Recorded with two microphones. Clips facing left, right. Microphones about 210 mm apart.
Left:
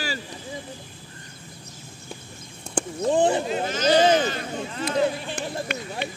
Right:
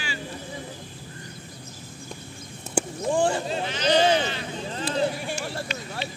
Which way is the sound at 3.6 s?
45° left (ahead or behind).